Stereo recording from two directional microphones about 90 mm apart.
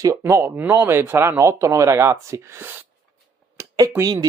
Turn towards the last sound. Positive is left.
turn(degrees=-40)  # may be behind; listen again after turning